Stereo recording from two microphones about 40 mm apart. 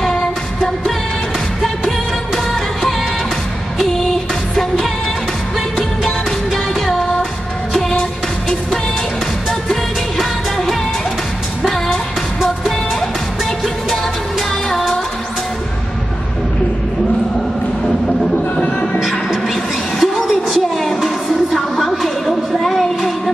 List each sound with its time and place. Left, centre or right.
1.6 s music: centre
6.0 s music: centre
9.7 s music: centre
19.4 s a sound: centre
20.9 s music: centre
22.2 s a sound: centre